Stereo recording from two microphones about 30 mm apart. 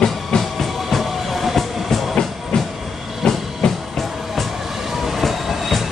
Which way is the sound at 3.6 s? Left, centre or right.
Left.